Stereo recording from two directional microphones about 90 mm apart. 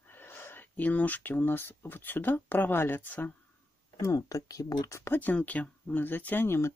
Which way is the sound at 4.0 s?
35° left (ahead or behind).